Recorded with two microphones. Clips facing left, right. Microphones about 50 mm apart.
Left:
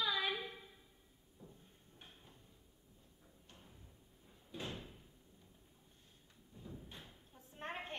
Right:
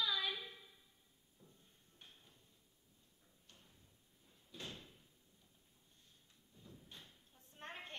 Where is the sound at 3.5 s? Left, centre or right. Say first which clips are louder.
Left 5 dB; centre.